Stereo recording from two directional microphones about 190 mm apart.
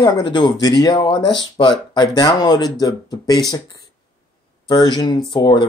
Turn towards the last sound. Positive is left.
turn(degrees=25)  # may be behind; listen again after turning